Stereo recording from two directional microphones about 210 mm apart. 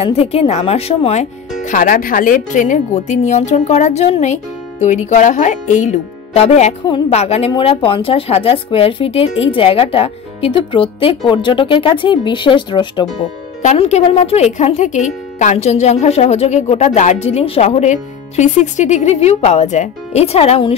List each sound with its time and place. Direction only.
0.0 s speech: 30° left (ahead or behind)
13.6 s speech: 35° left (ahead or behind)